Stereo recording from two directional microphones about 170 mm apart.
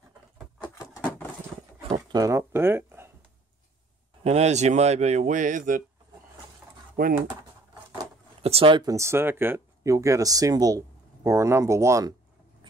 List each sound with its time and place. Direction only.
0.6 s a sound: 20° left (ahead or behind)
2.0 s speech: 20° right (ahead or behind)
4.2 s speech: 40° right (ahead or behind)
7.0 s speech: 60° right (ahead or behind)
8.4 s speech: 35° right (ahead or behind); by 12.1 s 15° right (ahead or behind)